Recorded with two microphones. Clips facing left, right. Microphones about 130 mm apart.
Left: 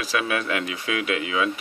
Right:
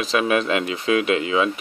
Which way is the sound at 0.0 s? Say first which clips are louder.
Right 5 dB; 25° right (ahead or behind).